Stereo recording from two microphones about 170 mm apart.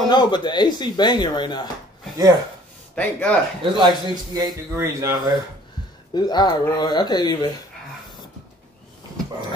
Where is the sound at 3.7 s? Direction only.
25° right (ahead or behind).